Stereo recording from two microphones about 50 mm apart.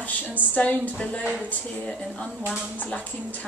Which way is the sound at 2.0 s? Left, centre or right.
Centre.